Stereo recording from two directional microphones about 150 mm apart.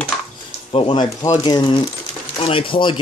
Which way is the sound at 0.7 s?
35° left (ahead or behind).